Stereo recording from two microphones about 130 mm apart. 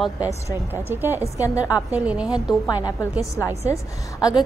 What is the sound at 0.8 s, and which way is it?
Speech, 15° right (ahead or behind).